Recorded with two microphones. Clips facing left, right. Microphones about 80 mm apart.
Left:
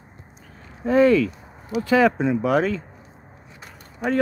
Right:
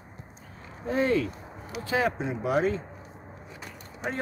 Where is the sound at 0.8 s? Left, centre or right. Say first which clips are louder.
Left 9 dB; left.